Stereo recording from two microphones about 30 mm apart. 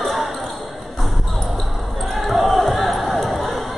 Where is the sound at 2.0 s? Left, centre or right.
Centre.